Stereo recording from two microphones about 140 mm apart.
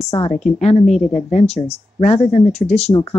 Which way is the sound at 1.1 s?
50° left (ahead or behind).